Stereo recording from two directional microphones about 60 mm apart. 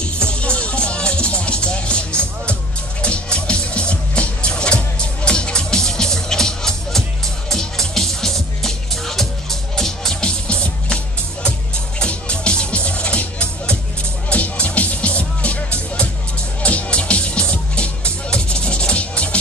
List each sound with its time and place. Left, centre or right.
0.0 s music: centre
10.5 s music: centre
12.0 s music: centre